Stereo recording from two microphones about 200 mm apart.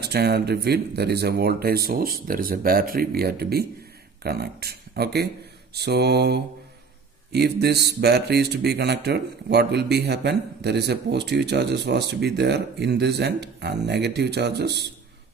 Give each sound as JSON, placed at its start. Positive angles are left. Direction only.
{"t": 0.0, "sound": "speech", "side_deg": -55}